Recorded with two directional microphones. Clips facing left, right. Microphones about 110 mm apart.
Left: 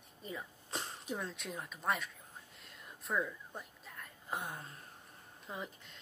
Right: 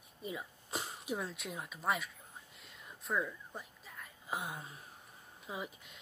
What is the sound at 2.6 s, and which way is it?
Whispering, centre (ahead or behind).